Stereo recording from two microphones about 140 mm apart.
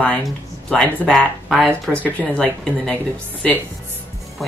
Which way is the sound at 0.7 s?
5° left (ahead or behind).